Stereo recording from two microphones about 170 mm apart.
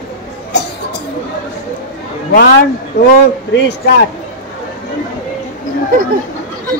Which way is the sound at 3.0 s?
70° left (ahead or behind).